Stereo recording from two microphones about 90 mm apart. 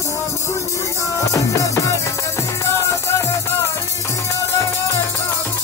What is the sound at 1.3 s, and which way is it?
Music, 35° left (ahead or behind).